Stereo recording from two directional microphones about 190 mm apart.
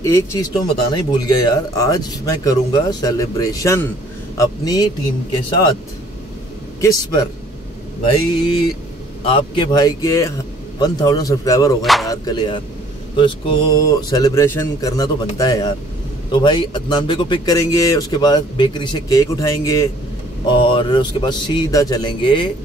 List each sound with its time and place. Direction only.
0.0 s speech: 15° left (ahead or behind)
6.8 s speech: 20° left (ahead or behind)
9.2 s speech: 25° left (ahead or behind)
11.8 s music: centre (ahead or behind)
12.1 s speech: 20° left (ahead or behind)
20.5 s speech: 25° left (ahead or behind)